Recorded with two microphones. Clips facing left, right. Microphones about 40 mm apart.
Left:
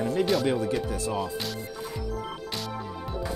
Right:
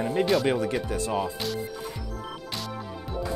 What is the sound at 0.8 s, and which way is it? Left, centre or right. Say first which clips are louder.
Speech: right 2 dB; right.